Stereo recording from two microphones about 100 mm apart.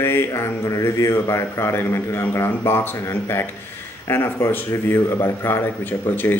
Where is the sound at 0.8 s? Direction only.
25° left (ahead or behind).